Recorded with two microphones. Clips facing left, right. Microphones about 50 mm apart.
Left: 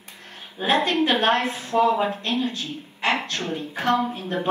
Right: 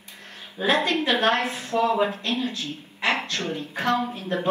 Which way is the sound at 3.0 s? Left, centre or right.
Left.